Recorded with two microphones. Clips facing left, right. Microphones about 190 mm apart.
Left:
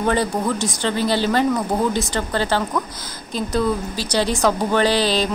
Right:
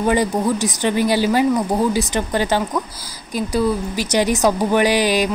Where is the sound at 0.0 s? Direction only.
10° right (ahead or behind).